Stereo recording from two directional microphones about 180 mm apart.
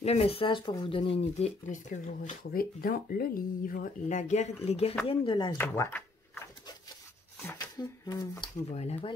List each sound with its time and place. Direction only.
0.0 s speech: 35° left (ahead or behind)
1.7 s speech: 45° left (ahead or behind); by 5.6 s 25° left (ahead or behind)
5.6 s speech: 10° left (ahead or behind)
7.4 s speech: 15° left (ahead or behind)
8.6 s speech: 35° left (ahead or behind)